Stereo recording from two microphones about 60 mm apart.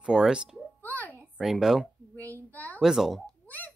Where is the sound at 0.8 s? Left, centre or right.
Left.